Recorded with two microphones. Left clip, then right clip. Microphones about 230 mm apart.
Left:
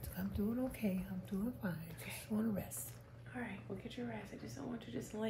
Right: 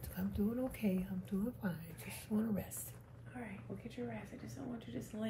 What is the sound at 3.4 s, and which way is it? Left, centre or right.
Speech, left.